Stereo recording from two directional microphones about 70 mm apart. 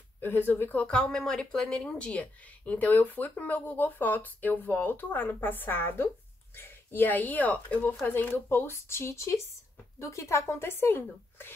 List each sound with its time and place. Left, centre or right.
0.2 s speech: left
0.8 s speech: centre; by 11.5 s left